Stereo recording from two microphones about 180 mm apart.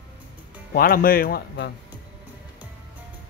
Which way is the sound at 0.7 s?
55° left (ahead or behind).